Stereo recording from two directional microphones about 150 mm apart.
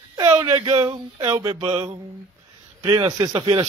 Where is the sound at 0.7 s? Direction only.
30° right (ahead or behind).